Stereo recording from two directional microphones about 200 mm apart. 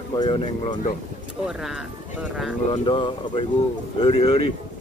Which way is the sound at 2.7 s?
25° left (ahead or behind).